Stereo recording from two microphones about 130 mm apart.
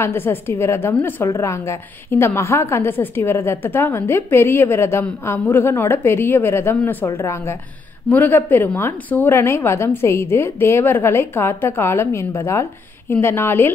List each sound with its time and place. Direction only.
0.0 s a woman's voice: 20° left (ahead or behind)